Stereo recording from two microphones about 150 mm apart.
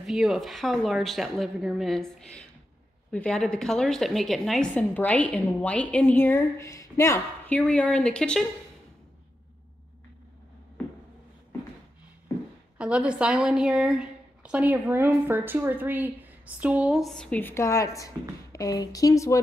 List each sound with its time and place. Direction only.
0.0 s a woman's voice: centre (ahead or behind)
12.7 s a woman's voice: 5° right (ahead or behind); by 19.4 s 20° left (ahead or behind)